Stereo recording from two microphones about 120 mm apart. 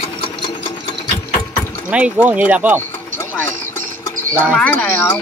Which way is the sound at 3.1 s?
15° left (ahead or behind).